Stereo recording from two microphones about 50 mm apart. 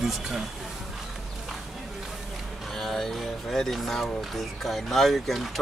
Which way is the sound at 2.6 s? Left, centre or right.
Centre.